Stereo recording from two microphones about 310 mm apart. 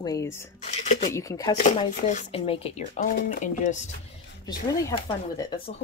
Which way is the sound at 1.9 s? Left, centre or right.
Left.